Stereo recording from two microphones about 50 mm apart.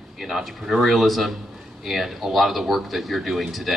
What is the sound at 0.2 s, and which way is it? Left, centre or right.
Speech, centre.